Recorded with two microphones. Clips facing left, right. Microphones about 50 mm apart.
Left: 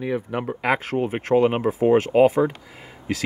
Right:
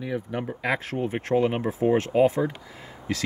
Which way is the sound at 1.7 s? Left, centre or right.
Left.